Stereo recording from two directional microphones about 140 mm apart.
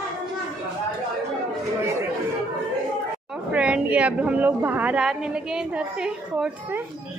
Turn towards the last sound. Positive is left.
turn(degrees=-5)  # may be behind; listen again after turning